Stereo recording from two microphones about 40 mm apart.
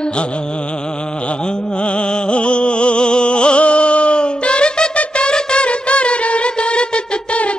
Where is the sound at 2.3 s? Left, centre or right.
Left.